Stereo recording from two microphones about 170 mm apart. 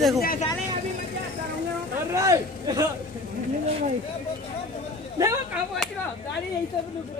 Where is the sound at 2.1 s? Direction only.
20° right (ahead or behind).